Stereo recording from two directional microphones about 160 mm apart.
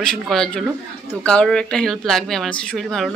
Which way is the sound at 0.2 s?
Centre (ahead or behind).